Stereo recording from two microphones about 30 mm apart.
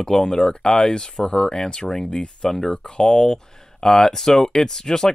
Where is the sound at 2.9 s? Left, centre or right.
Left.